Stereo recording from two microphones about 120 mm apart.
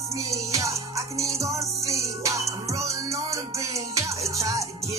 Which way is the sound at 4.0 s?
25° right (ahead or behind).